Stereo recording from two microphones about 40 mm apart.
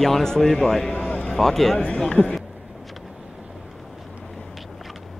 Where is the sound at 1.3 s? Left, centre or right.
Centre.